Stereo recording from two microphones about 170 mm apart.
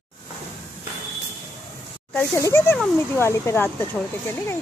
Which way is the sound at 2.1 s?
10° left (ahead or behind).